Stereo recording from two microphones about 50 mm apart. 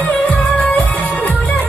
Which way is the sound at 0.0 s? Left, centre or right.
Left.